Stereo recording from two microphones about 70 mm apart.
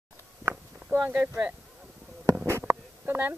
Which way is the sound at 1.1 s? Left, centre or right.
Right.